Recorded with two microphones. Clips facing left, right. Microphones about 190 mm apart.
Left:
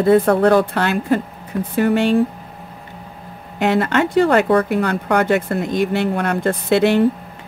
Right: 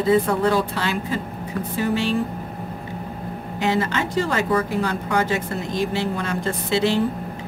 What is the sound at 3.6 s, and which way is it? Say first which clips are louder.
Speech: left 6 dB; 65° left (ahead or behind).